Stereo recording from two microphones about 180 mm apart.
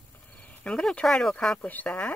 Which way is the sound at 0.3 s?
10° left (ahead or behind).